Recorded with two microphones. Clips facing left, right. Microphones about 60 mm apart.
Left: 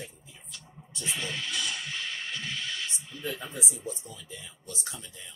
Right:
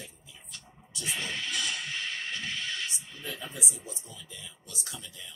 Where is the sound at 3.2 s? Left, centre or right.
Left.